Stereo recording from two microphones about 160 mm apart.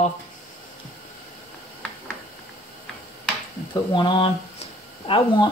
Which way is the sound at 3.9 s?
30° left (ahead or behind).